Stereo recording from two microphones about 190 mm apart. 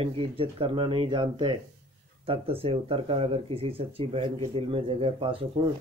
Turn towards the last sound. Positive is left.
turn(degrees=-30)  # may be behind; listen again after turning